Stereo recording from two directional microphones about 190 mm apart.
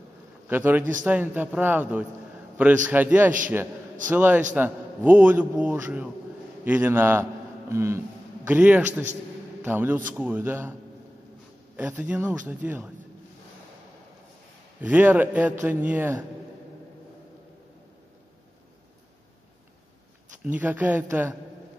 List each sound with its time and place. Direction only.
0.5 s a man's voice: 10° right (ahead or behind)
11.7 s a man's voice: 5° right (ahead or behind)
14.8 s a man's voice: 10° right (ahead or behind)
20.4 s a man's voice: 10° right (ahead or behind)